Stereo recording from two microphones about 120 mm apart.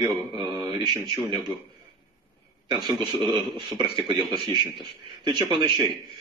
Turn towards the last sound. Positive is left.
turn(degrees=-40)  # may be behind; listen again after turning